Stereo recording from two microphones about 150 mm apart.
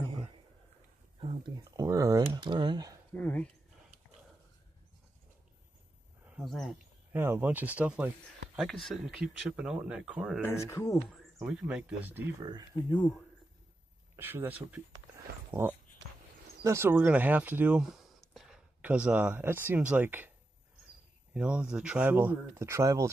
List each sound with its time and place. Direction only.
0.0 s a sound: 40° right (ahead or behind)
1.2 s speech: 35° right (ahead or behind)
3.2 s speech: 10° left (ahead or behind)
6.2 s speech: centre (ahead or behind)
7.1 s speech: 15° right (ahead or behind)
8.5 s speech: centre (ahead or behind)
10.6 s speech: 20° left (ahead or behind)
11.1 s speech: centre (ahead or behind)
11.6 s speech: 10° right (ahead or behind)
12.4 s speech: 25° right (ahead or behind)
14.1 s speech: 15° right (ahead or behind)
16.6 s speech: 20° right (ahead or behind)
21.3 s speech: 5° right (ahead or behind)